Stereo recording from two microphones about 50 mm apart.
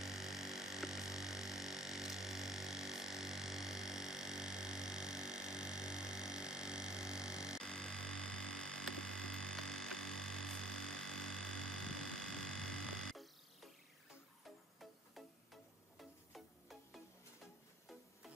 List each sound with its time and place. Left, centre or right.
0.0 s mains hum: centre
7.6 s a sound: centre
14.8 s music: centre